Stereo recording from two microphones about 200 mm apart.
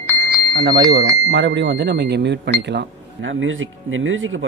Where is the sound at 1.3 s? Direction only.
60° right (ahead or behind); by 4.4 s 75° right (ahead or behind).